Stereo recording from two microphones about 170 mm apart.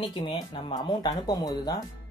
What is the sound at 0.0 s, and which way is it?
Speech, 30° left (ahead or behind).